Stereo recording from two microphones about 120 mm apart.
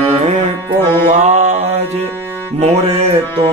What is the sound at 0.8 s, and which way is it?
Music, 20° left (ahead or behind).